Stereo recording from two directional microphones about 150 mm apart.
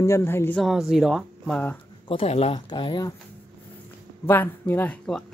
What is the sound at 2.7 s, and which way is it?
Speech, 30° left (ahead or behind).